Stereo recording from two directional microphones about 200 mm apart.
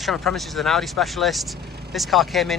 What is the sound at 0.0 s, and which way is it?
Speech, centre (ahead or behind).